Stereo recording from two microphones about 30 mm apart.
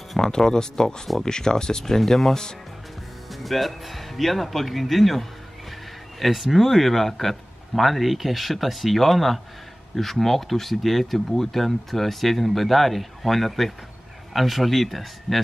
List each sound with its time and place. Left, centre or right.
0.2 s speech: left
1.9 s speech: centre
3.3 s speech: centre